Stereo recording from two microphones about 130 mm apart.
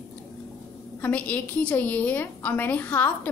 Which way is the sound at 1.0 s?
10° left (ahead or behind).